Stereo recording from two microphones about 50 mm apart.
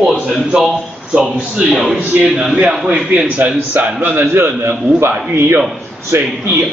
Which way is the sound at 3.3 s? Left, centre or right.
Right.